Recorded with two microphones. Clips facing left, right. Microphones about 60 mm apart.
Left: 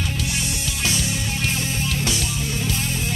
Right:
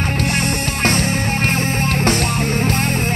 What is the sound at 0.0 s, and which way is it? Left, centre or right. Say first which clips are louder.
Music: right 7 dB; right.